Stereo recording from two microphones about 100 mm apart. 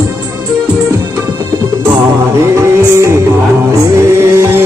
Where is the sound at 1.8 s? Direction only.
25° right (ahead or behind).